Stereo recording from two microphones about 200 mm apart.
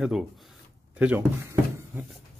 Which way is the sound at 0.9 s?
10° right (ahead or behind).